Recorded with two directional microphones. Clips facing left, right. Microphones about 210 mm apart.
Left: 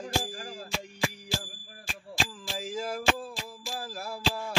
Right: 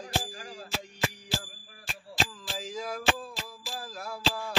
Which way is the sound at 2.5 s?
5° left (ahead or behind).